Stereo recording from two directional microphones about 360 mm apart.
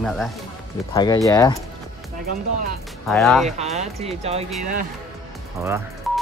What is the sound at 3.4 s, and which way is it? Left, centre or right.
Speech, centre.